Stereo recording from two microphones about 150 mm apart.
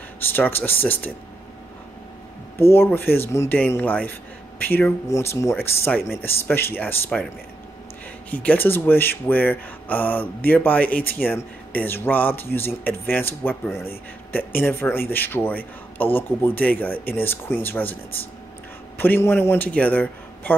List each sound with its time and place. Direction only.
0.2 s speech: 15° left (ahead or behind)
2.5 s speech: 15° left (ahead or behind)
8.3 s speech: 10° left (ahead or behind)
18.9 s a man's voice: 15° left (ahead or behind)